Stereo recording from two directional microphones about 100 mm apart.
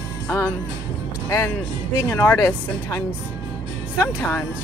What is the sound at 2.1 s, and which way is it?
Speech, 20° left (ahead or behind).